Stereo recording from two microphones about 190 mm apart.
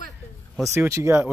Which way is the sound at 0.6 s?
15° right (ahead or behind).